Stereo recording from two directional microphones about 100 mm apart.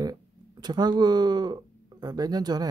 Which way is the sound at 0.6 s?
45° right (ahead or behind).